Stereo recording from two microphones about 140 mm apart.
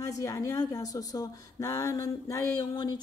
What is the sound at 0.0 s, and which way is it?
Speech, 25° left (ahead or behind).